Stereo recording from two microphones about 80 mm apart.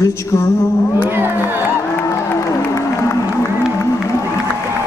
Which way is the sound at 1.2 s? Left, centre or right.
Right.